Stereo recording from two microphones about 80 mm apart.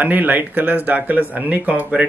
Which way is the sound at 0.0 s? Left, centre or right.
Right.